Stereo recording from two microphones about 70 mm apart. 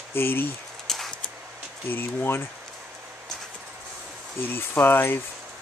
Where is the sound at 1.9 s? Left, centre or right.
Left.